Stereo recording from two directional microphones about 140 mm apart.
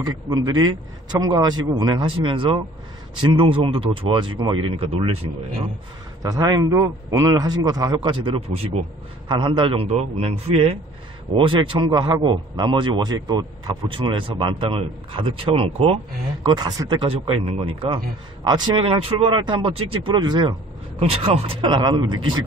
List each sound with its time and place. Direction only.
0.0 s a man's voice: 30° right (ahead or behind)
6.2 s a man's voice: 25° right (ahead or behind)